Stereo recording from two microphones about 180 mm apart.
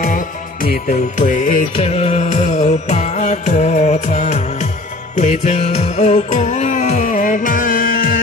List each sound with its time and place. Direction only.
0.0 s music: 50° left (ahead or behind)